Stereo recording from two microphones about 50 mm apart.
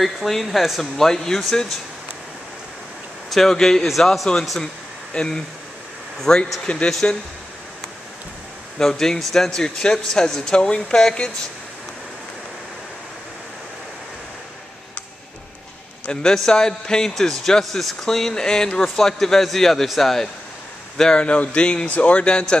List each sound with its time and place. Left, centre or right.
0.0 s speech: centre
0.9 s speech: centre
3.3 s speech: centre
5.1 s speech: centre
6.9 s speech: centre
8.7 s speech: centre
16.1 s speech: centre
21.0 s speech: centre